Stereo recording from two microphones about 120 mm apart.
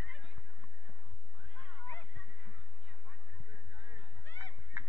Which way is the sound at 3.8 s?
15° right (ahead or behind).